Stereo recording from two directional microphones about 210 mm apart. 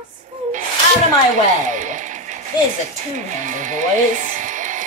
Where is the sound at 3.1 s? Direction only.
35° right (ahead or behind).